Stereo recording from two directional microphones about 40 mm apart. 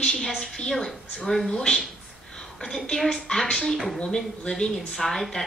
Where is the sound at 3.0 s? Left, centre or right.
Centre.